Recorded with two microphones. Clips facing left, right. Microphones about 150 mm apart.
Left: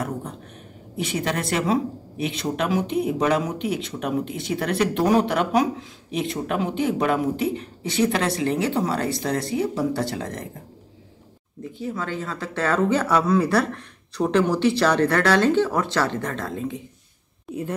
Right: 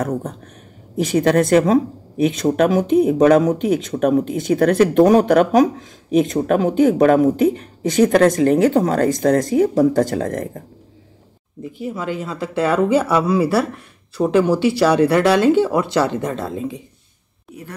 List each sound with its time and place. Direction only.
0.9 s speech: 45° right (ahead or behind)
11.8 s speech: 10° right (ahead or behind)